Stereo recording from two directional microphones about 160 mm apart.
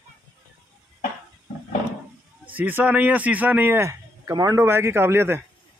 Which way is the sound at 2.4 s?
10° right (ahead or behind).